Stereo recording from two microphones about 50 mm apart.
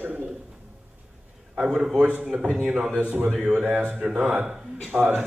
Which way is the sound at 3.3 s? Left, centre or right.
Centre.